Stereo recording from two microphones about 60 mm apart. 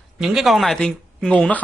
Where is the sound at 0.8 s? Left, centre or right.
Centre.